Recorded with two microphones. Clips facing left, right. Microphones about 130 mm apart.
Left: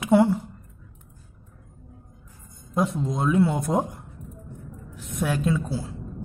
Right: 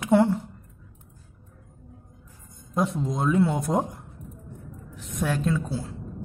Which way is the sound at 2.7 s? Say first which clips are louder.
Left 1 dB; centre (ahead or behind).